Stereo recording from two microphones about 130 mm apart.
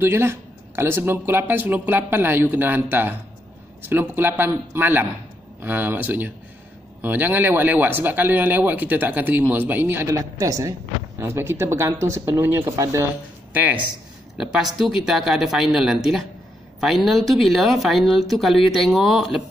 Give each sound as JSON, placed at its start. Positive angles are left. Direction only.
{"t": 0.0, "sound": "speech", "side_deg": -20}
{"t": 13.5, "sound": "speech", "side_deg": -10}